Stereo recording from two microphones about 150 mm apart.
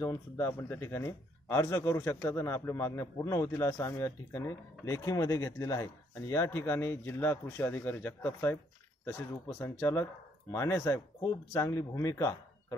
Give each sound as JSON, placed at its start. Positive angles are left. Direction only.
{"t": 0.0, "sound": "speech", "side_deg": 15}
{"t": 9.6, "sound": "speech", "side_deg": 15}